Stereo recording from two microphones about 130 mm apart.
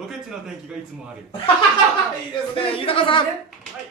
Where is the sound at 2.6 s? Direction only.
45° left (ahead or behind).